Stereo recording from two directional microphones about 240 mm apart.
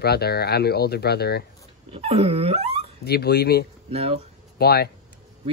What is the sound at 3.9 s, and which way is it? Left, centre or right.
Speech, right.